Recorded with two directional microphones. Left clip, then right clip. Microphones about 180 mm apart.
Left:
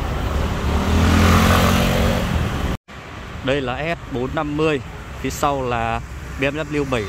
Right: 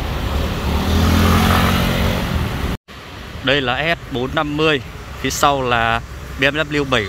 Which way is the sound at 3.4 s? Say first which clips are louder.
Right 5 dB; centre (ahead or behind).